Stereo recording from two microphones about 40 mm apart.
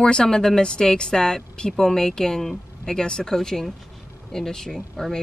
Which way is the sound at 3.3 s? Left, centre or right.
Centre.